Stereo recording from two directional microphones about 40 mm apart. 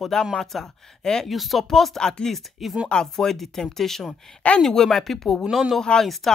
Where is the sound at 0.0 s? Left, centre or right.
Centre.